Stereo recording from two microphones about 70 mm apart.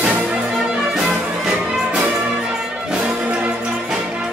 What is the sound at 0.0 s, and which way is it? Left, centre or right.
Music, centre.